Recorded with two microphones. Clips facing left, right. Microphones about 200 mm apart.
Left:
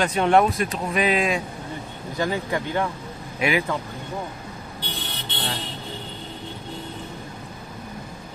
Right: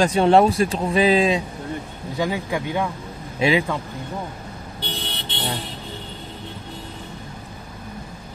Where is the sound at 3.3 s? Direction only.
25° right (ahead or behind).